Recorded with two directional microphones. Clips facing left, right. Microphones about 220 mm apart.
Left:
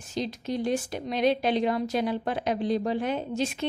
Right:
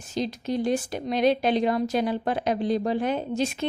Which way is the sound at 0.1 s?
40° right (ahead or behind).